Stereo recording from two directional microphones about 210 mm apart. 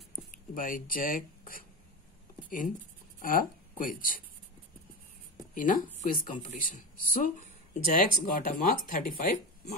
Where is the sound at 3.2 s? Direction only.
40° left (ahead or behind).